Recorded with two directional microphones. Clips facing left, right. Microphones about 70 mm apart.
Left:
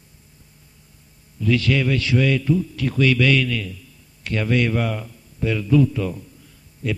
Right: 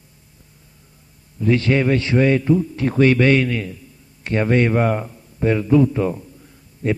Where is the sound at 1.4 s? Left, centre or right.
Right.